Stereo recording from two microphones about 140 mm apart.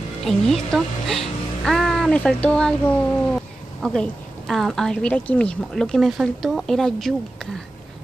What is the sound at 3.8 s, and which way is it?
A woman's voice, 5° left (ahead or behind).